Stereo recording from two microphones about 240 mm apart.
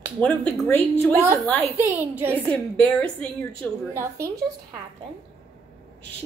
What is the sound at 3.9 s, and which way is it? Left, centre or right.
Speech, centre.